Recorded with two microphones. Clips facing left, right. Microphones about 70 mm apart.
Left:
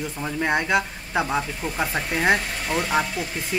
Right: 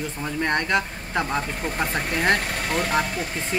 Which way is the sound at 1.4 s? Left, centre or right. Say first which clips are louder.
Right 1 dB; right.